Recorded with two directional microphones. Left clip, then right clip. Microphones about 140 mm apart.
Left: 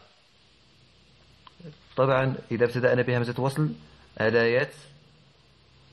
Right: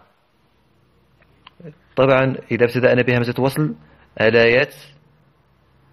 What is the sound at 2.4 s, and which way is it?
A man's voice, 30° right (ahead or behind).